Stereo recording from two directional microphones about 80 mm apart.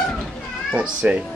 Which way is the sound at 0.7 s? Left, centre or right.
Centre.